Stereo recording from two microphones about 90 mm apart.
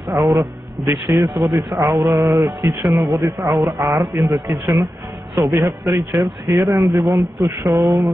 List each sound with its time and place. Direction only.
0.1 s a man's voice: 40° right (ahead or behind)
1.8 s speech: 40° right (ahead or behind)
4.2 s speech: 40° right (ahead or behind)